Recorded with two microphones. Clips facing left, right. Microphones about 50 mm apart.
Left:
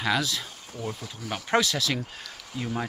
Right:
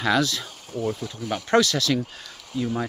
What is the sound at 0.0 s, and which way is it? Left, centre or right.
Speech, centre.